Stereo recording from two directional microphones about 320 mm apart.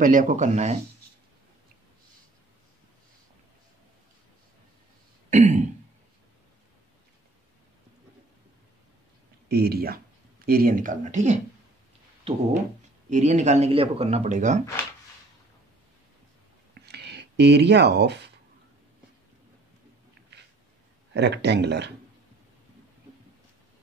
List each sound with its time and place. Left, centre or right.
0.0 s speech: right
5.3 s throat clearing: right
9.5 s speech: right
12.3 s a sound: centre
13.1 s speech: right
16.8 s speech: right
21.1 s speech: right